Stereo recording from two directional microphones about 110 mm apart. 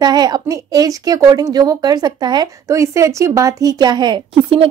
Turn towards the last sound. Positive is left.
turn(degrees=-50)  # may be behind; listen again after turning